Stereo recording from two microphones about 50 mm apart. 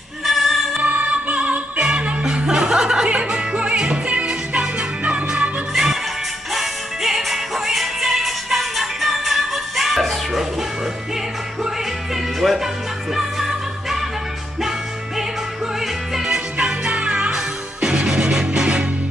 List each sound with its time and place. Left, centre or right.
0.2 s music: centre
0.7 s music: right
6.5 s music: centre
12.4 s music: centre
16.3 s music: centre